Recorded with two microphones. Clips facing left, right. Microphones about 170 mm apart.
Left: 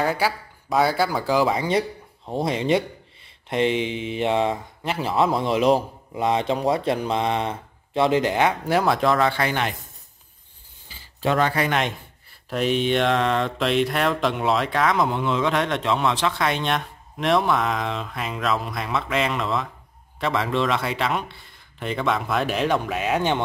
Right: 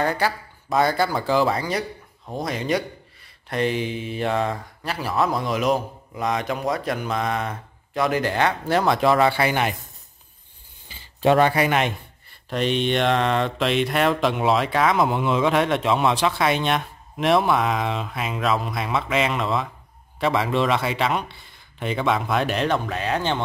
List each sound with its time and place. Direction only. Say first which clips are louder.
0.0 s speech: even; 5° left (ahead or behind)
1.6 s speech: left 4 dB; 25° left (ahead or behind); by 9.8 s 10° right (ahead or behind)
10.9 s speech: right 5 dB; 20° right (ahead or behind); by 23.4 s 10° left (ahead or behind)